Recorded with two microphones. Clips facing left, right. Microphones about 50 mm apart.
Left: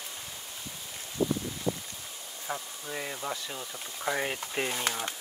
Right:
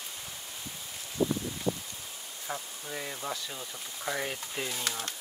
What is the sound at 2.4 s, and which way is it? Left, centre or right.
Speech, centre.